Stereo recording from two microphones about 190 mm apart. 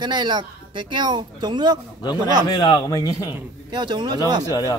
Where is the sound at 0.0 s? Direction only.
25° right (ahead or behind).